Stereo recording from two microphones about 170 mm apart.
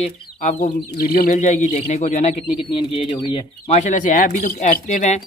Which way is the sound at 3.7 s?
45° left (ahead or behind).